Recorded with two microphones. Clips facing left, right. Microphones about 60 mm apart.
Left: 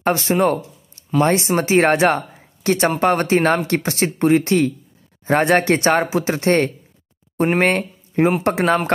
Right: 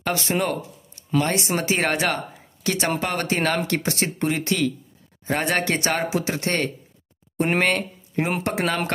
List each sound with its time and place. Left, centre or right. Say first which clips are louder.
0.0 s speech: left 7 dB; left